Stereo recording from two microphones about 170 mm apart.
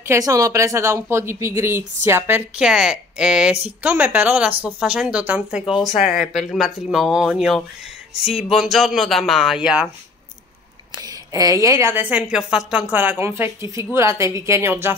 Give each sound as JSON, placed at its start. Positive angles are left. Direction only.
{"t": 0.0, "sound": "a woman's voice", "side_deg": -15}
{"t": 5.9, "sound": "speech", "side_deg": 40}
{"t": 6.2, "sound": "speech", "side_deg": 0}
{"t": 11.0, "sound": "a woman's voice", "side_deg": -20}